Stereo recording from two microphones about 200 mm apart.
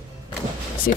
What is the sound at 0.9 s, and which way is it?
Speech, 50° left (ahead or behind).